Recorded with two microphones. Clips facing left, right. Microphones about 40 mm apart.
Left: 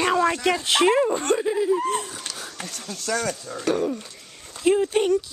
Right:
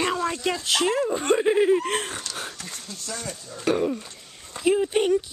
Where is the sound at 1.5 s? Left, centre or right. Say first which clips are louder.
Right 3 dB; right.